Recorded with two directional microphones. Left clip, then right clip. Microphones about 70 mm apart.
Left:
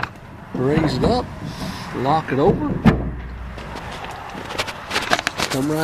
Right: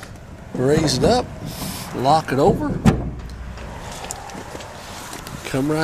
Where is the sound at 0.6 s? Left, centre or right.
Right.